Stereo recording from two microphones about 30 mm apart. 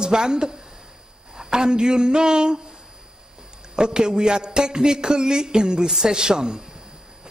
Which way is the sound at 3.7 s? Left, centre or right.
Right.